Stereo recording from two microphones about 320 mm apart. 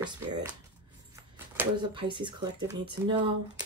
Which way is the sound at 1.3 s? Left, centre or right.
Centre.